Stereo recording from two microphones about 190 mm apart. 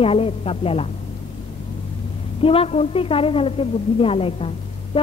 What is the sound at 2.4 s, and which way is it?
A woman's voice, 30° left (ahead or behind).